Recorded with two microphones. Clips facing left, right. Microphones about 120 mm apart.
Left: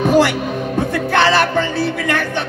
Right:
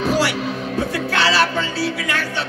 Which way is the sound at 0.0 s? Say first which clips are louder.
Left 6 dB; 50° left (ahead or behind).